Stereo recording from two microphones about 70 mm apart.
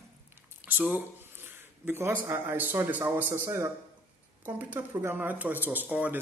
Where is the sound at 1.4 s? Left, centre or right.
Right.